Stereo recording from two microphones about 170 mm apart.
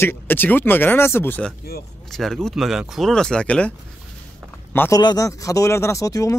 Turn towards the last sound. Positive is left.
turn(degrees=20)  # may be behind; listen again after turning